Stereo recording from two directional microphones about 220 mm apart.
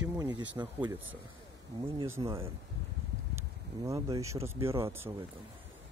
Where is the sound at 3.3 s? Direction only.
15° right (ahead or behind).